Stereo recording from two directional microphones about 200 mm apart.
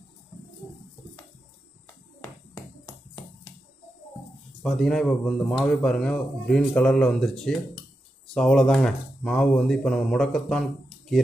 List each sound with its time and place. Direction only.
4.6 s speech: centre (ahead or behind)